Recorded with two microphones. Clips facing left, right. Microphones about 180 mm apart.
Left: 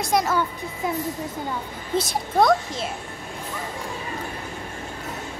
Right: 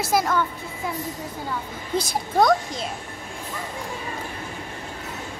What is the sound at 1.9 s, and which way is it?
Speech, centre (ahead or behind).